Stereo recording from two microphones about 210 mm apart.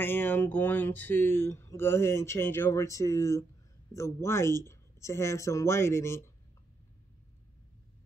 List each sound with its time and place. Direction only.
0.0 s speech: 10° left (ahead or behind)